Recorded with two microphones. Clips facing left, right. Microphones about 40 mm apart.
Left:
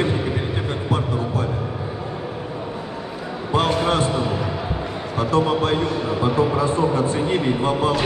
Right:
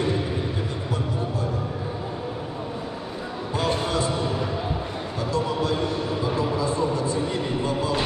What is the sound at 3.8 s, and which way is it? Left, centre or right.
Speech, left.